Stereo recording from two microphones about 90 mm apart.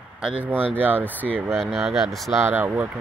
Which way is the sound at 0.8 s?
20° right (ahead or behind).